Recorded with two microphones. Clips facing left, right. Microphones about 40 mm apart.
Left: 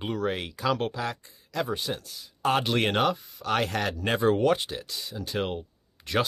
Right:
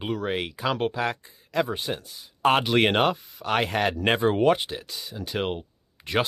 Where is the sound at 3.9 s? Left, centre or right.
Right.